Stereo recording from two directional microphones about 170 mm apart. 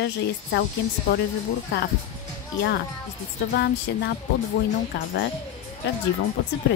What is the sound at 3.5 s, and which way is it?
Music, 70° left (ahead or behind).